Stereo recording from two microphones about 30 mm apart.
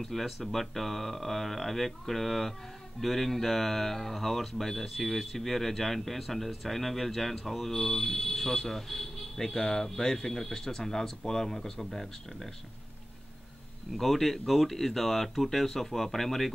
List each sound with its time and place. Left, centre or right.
0.0 s speech: centre
9.4 s speech: centre
13.9 s speech: centre